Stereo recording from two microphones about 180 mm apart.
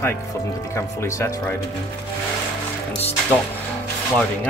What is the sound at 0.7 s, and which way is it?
Speech, 15° left (ahead or behind).